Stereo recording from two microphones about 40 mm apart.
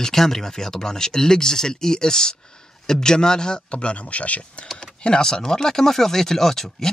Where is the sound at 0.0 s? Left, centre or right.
Centre; by 4.6 s left.